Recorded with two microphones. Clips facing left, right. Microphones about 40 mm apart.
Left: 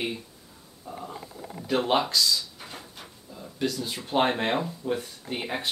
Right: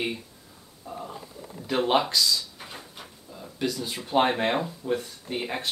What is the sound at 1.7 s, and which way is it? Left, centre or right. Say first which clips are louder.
Speech: right 1 dB; centre.